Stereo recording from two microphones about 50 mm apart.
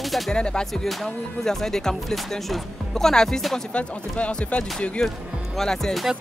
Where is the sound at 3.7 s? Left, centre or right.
Left.